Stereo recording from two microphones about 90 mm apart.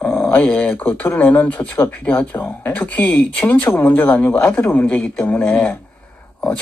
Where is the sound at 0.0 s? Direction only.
20° left (ahead or behind).